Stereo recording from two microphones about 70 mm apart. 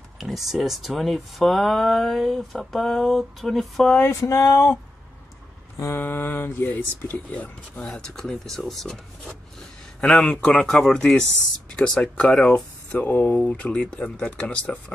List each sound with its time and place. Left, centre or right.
0.2 s speech: centre
4.1 s a sound: left
5.8 s speech: left
7.7 s speech: centre
13.0 s speech: left
13.4 s speech: centre